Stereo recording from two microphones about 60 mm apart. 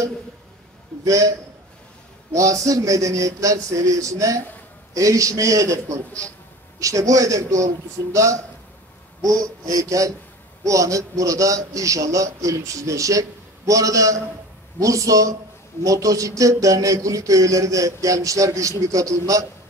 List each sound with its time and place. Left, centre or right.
1.0 s a man's voice: right
2.3 s a man's voice: right
9.2 s a man's voice: right